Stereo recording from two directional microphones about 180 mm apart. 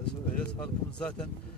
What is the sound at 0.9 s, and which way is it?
Speech, 5° left (ahead or behind).